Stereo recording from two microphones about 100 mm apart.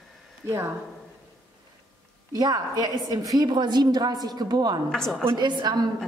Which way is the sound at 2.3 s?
40° right (ahead or behind).